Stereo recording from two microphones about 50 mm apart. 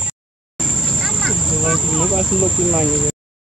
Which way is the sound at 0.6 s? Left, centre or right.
Centre.